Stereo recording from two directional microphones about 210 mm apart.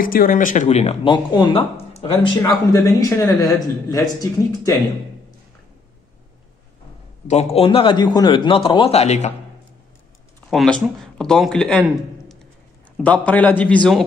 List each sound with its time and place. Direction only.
0.0 s speech: 45° left (ahead or behind); by 2.3 s 25° left (ahead or behind)
2.3 s speech: 15° left (ahead or behind)
7.2 s a man's voice: 30° left (ahead or behind)
10.5 s a man's voice: centre (ahead or behind)